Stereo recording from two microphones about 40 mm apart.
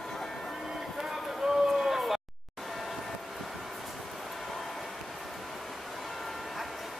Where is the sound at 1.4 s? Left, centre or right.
Centre.